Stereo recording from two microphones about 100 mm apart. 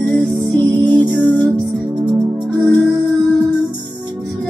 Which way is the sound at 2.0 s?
50° right (ahead or behind).